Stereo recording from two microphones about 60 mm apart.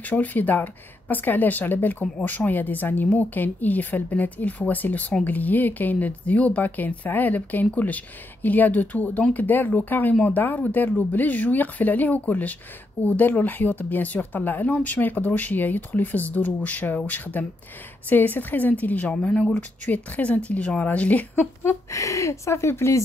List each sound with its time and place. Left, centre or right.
0.0 s speech: left
21.9 s speech: left